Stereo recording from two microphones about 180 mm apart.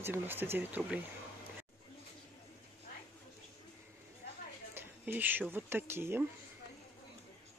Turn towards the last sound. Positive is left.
turn(degrees=-15)  # may be behind; listen again after turning